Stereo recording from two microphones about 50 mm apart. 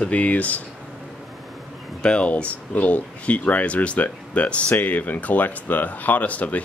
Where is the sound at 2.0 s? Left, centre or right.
Left.